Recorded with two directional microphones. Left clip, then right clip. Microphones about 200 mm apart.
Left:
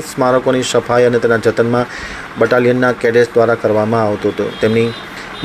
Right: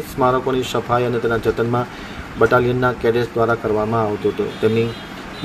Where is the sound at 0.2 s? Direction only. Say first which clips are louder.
Left 5 dB; 20° left (ahead or behind).